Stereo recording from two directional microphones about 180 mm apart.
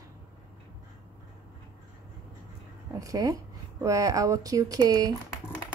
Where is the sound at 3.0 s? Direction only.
20° right (ahead or behind).